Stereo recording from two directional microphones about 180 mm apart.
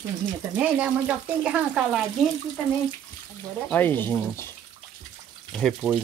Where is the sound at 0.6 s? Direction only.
5° right (ahead or behind).